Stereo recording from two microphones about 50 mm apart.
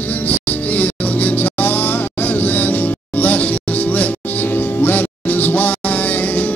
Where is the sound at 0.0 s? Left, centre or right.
Left.